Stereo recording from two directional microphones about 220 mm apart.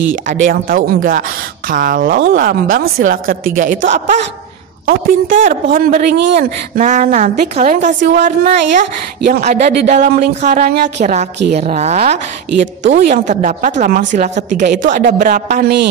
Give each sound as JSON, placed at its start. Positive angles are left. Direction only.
{"t": 0.1, "sound": "a woman's voice", "side_deg": -35}